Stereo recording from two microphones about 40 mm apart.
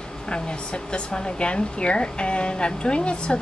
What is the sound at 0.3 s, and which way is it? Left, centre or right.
Speech, left.